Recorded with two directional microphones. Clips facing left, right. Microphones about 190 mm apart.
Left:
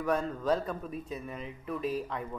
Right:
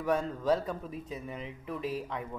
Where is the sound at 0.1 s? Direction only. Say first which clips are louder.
Right 1 dB; 25° right (ahead or behind).